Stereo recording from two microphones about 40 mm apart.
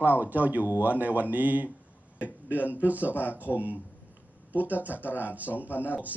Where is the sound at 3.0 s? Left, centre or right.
Left.